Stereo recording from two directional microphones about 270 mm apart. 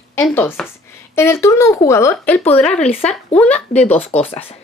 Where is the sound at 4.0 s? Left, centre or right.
Left.